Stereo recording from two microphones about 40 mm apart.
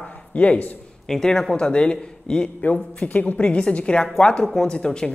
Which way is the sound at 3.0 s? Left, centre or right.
Left.